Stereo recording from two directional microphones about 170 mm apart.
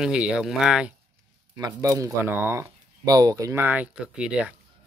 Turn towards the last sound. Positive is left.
turn(degrees=-5)  # may be behind; listen again after turning